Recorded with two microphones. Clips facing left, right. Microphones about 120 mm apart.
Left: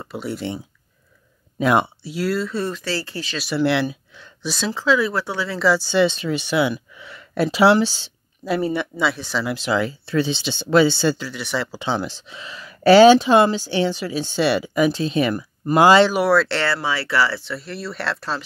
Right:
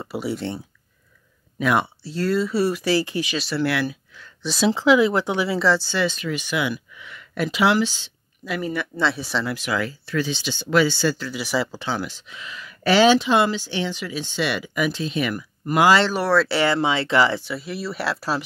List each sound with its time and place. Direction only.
0.0 s speech: 5° right (ahead or behind)
1.6 s speech: 30° left (ahead or behind)
2.0 s speech: 5° left (ahead or behind); by 3.3 s 15° right (ahead or behind)
3.4 s speech: 20° left (ahead or behind)
4.6 s speech: 15° right (ahead or behind)
5.8 s speech: 20° left (ahead or behind)
9.1 s speech: centre (ahead or behind)
9.5 s speech: 25° left (ahead or behind)
11.2 s speech: 5° right (ahead or behind)
11.8 s speech: 25° left (ahead or behind)
16.0 s speech: 10° left (ahead or behind)
16.4 s speech: 10° right (ahead or behind)
16.7 s speech: 20° right (ahead or behind)
17.5 s speech: 5° right (ahead or behind)